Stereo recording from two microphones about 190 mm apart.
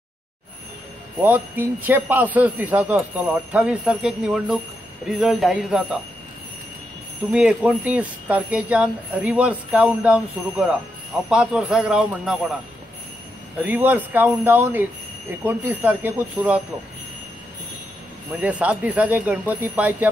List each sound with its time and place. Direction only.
1.2 s speech: 10° right (ahead or behind)
7.2 s speech: 5° right (ahead or behind)
13.7 s speech: 10° right (ahead or behind)
18.3 s speech: 5° right (ahead or behind)